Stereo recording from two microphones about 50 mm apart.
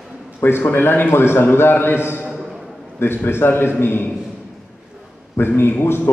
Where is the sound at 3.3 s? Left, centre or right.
Left.